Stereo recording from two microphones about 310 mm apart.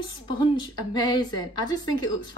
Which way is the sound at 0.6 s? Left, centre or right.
Centre.